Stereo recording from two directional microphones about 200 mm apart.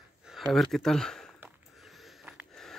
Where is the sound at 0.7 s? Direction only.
Centre (ahead or behind).